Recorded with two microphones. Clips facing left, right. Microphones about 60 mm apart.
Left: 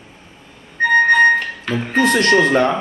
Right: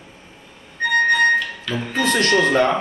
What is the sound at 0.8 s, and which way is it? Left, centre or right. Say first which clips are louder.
Music: left 5 dB; left.